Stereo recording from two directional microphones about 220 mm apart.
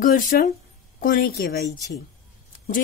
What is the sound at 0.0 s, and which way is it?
A woman's voice, 40° left (ahead or behind).